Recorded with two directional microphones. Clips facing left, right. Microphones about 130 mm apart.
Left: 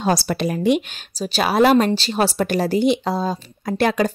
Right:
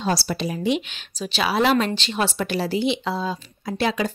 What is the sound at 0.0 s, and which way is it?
Speech, 50° left (ahead or behind).